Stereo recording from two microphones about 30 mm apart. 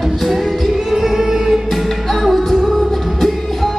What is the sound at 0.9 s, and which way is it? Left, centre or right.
Music, centre.